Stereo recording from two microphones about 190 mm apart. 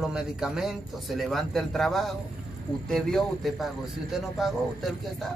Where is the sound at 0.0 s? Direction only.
5° right (ahead or behind).